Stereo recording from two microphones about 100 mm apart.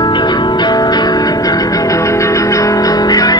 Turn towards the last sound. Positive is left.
turn(degrees=40)  # may be behind; listen again after turning